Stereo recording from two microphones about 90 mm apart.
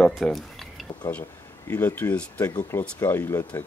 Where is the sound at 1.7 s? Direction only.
20° left (ahead or behind).